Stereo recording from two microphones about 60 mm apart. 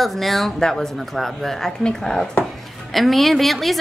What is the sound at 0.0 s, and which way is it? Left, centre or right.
A woman's voice, centre.